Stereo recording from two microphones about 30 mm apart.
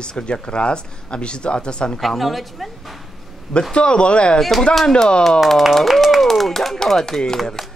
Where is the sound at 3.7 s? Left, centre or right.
Left.